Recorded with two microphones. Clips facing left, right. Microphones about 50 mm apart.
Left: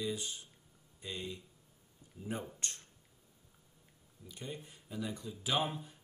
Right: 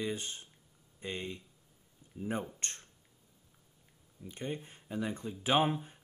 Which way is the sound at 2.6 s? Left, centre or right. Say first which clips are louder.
Right 1 dB; right.